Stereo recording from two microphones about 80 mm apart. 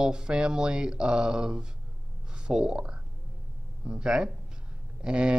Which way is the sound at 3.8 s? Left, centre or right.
Centre.